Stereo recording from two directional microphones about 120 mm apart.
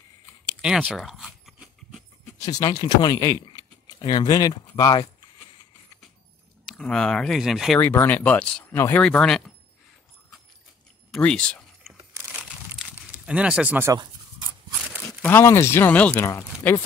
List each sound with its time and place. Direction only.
0.6 s a sound: 5° right (ahead or behind)
2.3 s speech: 30° left (ahead or behind)
3.4 s keys jangling: 35° left (ahead or behind)
6.8 s speech: 5° left (ahead or behind)
7.8 s speech: 20° left (ahead or behind)
8.7 s speech: 20° left (ahead or behind)
9.0 s speech: 5° left (ahead or behind)
11.1 s speech: 10° left (ahead or behind)
12.0 s a sound: 25° right (ahead or behind)
12.3 s a sound: 10° right (ahead or behind)
13.2 s speech: 10° right (ahead or behind)
15.2 s speech: 20° left (ahead or behind)
16.3 s speech: 25° left (ahead or behind)